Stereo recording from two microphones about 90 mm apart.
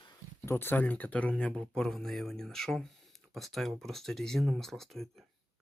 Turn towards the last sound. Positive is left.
turn(degrees=5)  # may be behind; listen again after turning